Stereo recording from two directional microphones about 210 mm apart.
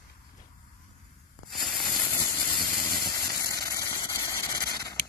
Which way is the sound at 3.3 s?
15° left (ahead or behind).